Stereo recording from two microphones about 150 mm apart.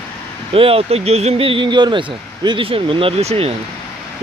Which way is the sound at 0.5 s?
40° right (ahead or behind).